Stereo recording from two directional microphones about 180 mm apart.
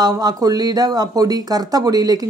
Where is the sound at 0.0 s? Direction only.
20° right (ahead or behind).